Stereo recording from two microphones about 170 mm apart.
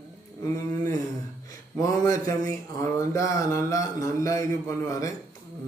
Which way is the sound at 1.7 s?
20° left (ahead or behind).